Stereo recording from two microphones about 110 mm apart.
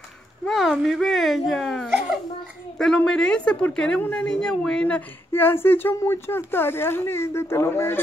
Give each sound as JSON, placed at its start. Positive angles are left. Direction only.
{"t": 0.5, "sound": "speech", "side_deg": 0}
{"t": 3.0, "sound": "speech", "side_deg": 5}